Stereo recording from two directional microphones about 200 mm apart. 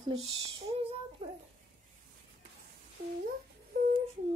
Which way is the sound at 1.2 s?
25° right (ahead or behind).